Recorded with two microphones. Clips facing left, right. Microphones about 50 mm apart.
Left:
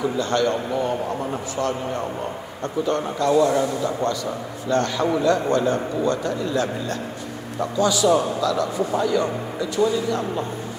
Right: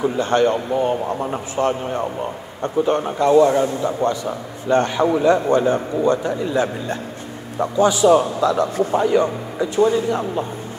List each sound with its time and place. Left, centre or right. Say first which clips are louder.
0.0 s a man's voice: right 4 dB; right